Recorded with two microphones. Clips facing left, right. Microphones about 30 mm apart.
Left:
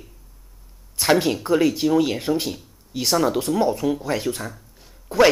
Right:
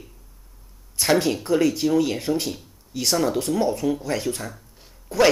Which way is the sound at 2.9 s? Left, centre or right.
Left.